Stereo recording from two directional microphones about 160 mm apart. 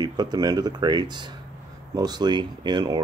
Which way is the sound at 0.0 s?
25° right (ahead or behind).